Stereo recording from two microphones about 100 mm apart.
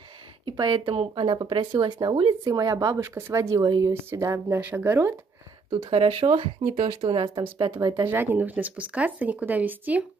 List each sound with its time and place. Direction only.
0.5 s speech: 50° right (ahead or behind)
2.5 s speech: 40° right (ahead or behind)
3.0 s speech: 25° right (ahead or behind)
3.9 s speech: 25° right (ahead or behind)
5.7 s speech: 65° right (ahead or behind); by 6.9 s 90° right
7.5 s speech: 50° right (ahead or behind)
7.9 s speech: 20° right (ahead or behind)